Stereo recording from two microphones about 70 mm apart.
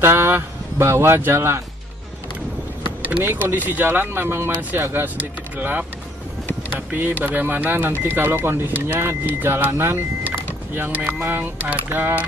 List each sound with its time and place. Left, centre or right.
0.0 s speech: right
3.0 s vehicle: centre
3.3 s speech: right
6.9 s speech: right